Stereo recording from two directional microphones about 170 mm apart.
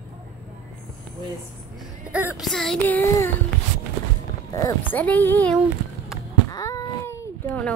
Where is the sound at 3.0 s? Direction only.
15° left (ahead or behind).